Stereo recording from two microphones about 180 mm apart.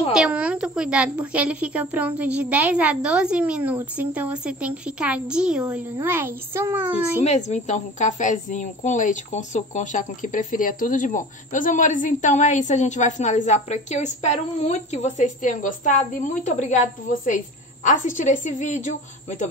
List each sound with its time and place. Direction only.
0.1 s a woman's voice: 5° right (ahead or behind)
7.2 s speech: 40° left (ahead or behind)